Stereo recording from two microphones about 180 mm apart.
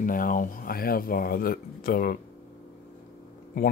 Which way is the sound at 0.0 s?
50° left (ahead or behind).